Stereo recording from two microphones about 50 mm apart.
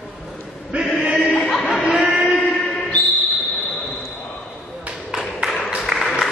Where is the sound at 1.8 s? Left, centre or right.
Centre.